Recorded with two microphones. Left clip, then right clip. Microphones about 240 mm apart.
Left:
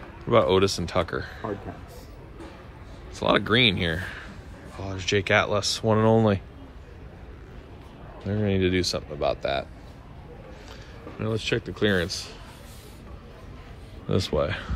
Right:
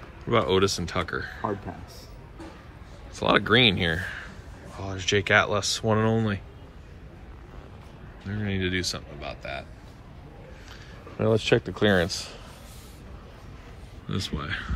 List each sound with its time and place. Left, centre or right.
0.3 s speech: centre
3.2 s speech: centre
8.3 s speech: centre
11.1 s speech: centre
14.0 s speech: centre